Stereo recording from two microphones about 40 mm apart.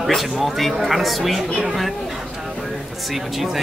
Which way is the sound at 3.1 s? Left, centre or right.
Centre.